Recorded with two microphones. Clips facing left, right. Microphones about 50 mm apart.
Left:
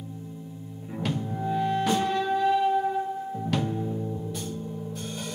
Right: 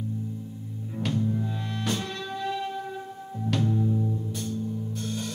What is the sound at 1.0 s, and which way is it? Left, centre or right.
Music, centre.